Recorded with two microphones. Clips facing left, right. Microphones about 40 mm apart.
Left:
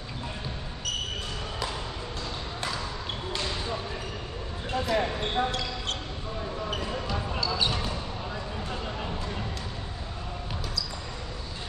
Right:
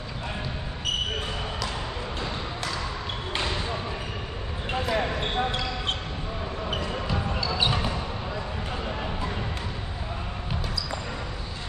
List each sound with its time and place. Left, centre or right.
3.3 s basketball bounce: right
6.7 s basketball bounce: centre